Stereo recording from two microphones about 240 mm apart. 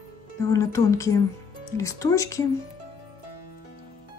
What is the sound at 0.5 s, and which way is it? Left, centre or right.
Speech, centre.